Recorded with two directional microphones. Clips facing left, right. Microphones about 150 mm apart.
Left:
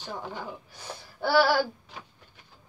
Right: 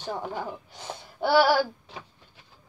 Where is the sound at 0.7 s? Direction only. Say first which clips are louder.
Right 3 dB; 25° right (ahead or behind).